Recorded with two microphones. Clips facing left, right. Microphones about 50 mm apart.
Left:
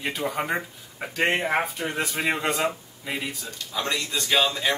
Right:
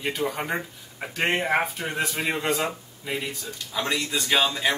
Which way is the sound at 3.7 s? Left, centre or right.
Centre.